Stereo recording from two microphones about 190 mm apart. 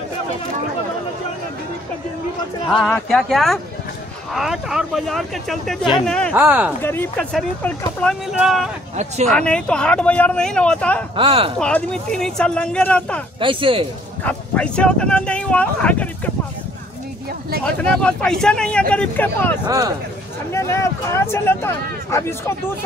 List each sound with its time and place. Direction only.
2.7 s speech: centre (ahead or behind)
6.3 s speech: 10° right (ahead or behind)
6.8 s speech: 10° left (ahead or behind)
8.9 s speech: 35° right (ahead or behind)
9.3 s speech: 5° left (ahead or behind)
11.1 s speech: 30° right (ahead or behind)
11.6 s speech: 5° left (ahead or behind)
13.4 s speech: 25° right (ahead or behind)
14.2 s speech: 5° left (ahead or behind)
18.0 s speech: 5° left (ahead or behind)